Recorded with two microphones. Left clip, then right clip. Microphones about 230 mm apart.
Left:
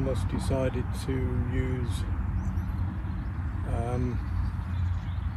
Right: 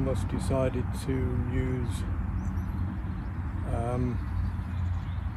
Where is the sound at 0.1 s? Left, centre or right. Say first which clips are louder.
Right 1 dB; right.